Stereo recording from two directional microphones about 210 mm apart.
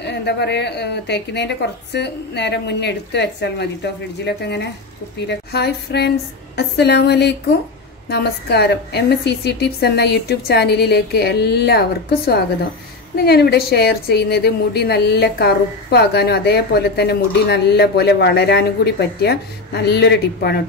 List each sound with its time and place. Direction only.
0.0 s a woman's voice: 55° left (ahead or behind)